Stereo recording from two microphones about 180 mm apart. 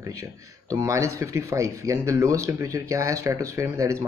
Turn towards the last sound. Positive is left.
turn(degrees=-15)  # may be behind; listen again after turning